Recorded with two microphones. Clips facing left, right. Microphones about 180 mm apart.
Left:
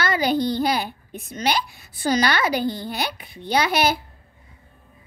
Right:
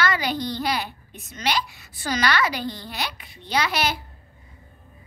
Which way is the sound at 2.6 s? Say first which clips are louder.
Left 5 dB; 50° left (ahead or behind).